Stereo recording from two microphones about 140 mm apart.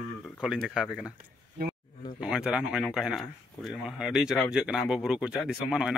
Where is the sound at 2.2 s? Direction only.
5° right (ahead or behind).